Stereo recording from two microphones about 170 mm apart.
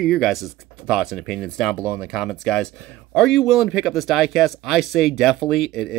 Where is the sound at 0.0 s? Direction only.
Centre (ahead or behind).